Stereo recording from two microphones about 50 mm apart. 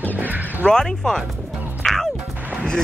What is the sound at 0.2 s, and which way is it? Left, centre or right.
Music, right.